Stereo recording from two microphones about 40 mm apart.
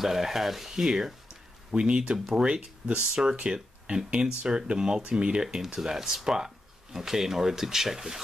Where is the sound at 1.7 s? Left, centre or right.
Right.